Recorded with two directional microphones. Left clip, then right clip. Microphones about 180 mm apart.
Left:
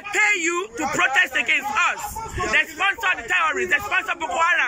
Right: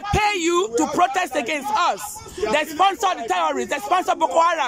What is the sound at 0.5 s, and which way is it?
A man's voice, 30° right (ahead or behind).